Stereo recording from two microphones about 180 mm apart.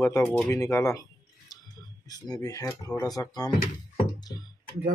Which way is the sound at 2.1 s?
20° left (ahead or behind).